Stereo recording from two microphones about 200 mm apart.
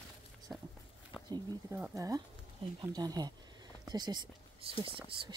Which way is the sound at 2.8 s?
20° right (ahead or behind).